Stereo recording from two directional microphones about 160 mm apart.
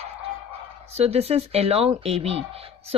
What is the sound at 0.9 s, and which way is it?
Speech, 40° right (ahead or behind).